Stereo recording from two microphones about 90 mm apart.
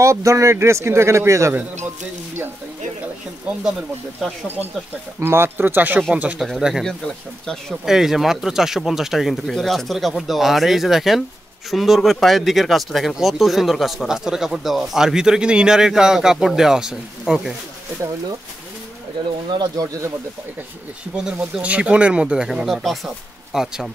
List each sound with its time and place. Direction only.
0.0 s speech: 35° right (ahead or behind)
4.2 s speech: centre (ahead or behind)
5.2 s speech: 25° right (ahead or behind)
6.4 s speech: centre (ahead or behind)
19.5 s speech: 50° right (ahead or behind)
21.2 s speech: 10° right (ahead or behind)